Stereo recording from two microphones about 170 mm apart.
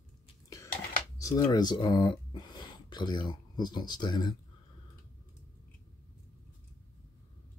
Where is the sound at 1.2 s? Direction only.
20° left (ahead or behind).